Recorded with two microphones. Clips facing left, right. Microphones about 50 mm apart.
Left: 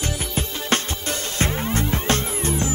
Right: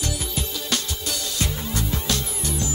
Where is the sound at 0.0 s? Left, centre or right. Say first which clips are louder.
Left 2 dB; left.